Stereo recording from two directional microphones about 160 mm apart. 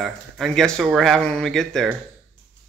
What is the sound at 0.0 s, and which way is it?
Speech, centre (ahead or behind).